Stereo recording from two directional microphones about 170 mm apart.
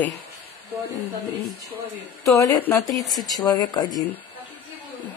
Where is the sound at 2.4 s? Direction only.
15° left (ahead or behind).